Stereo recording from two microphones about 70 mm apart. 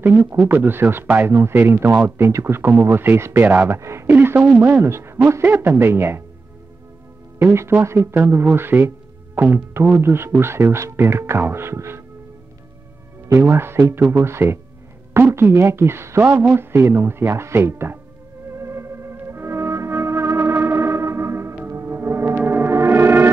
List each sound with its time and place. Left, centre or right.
0.0 s speech: right
3.4 s speech: right
3.7 s speech: right
4.8 s speech: right
7.3 s speech: right
13.3 s speech: right
18.5 s music: right